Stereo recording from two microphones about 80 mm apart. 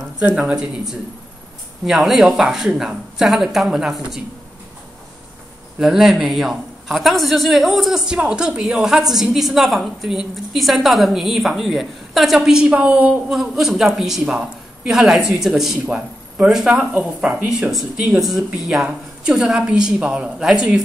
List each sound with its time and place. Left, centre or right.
0.5 s a woman's voice: centre
5.8 s a woman's voice: centre
13.3 s a woman's voice: centre